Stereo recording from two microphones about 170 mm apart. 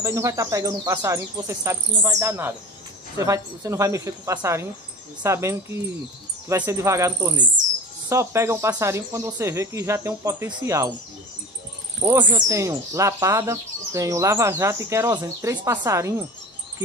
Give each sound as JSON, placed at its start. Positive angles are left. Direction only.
{"t": 0.0, "sound": "speech", "side_deg": -20}
{"t": 12.0, "sound": "speech", "side_deg": -15}